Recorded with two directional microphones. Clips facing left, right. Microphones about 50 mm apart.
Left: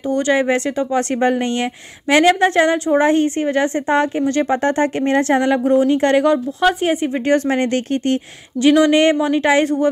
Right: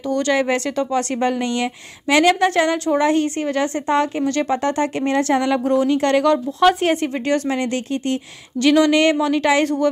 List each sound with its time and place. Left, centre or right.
0.1 s a woman's voice: left
6.2 s speech: centre
7.2 s speech: left
8.5 s speech: centre